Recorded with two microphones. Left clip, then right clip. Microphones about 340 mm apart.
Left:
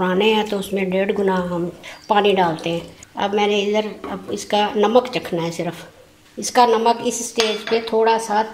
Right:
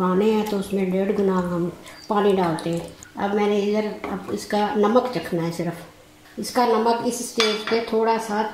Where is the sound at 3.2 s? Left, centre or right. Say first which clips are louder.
Left 3 dB; left.